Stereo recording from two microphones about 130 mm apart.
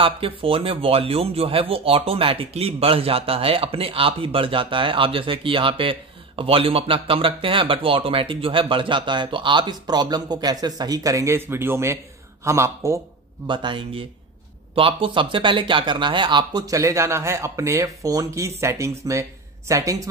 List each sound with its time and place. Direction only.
0.0 s a man's voice: 45° right (ahead or behind); by 13.0 s 20° right (ahead or behind)
13.5 s speech: 40° right (ahead or behind)